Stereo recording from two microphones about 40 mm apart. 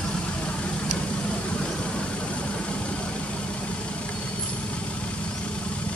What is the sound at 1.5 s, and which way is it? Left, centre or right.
Vehicle, left.